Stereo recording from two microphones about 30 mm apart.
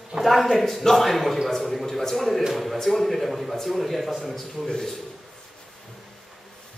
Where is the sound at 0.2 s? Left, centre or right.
Centre.